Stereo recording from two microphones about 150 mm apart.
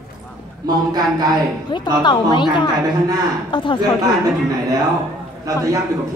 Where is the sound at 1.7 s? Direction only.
30° left (ahead or behind).